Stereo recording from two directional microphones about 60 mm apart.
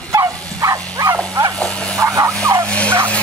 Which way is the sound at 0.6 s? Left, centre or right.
Right.